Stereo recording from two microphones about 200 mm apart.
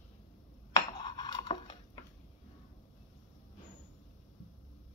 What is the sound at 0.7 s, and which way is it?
Dishes, 20° left (ahead or behind).